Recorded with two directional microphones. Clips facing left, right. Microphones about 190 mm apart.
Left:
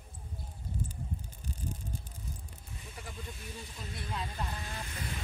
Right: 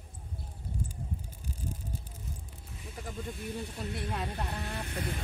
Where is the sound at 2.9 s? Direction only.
40° right (ahead or behind).